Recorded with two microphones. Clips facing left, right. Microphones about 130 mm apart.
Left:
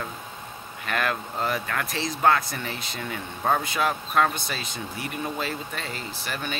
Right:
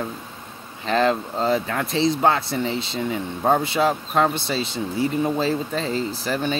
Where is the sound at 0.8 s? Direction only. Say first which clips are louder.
Right 8 dB; 25° right (ahead or behind).